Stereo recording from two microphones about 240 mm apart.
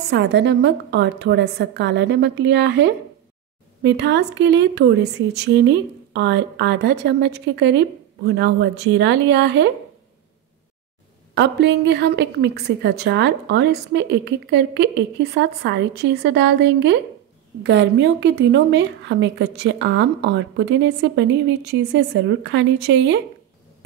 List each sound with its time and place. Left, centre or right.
0.1 s a woman's voice: right
11.3 s a woman's voice: right